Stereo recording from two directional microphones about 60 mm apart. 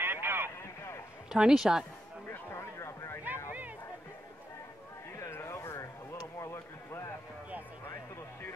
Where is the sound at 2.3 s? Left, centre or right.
Left.